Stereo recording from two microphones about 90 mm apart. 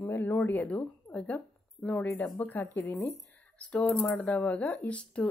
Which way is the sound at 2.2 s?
20° left (ahead or behind).